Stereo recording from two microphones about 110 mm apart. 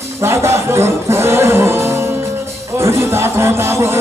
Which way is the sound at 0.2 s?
25° right (ahead or behind).